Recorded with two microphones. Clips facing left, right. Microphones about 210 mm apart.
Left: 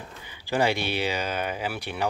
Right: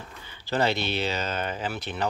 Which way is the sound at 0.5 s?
10° left (ahead or behind).